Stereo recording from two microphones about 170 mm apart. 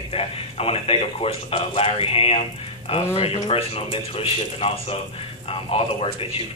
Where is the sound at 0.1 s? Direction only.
35° left (ahead or behind).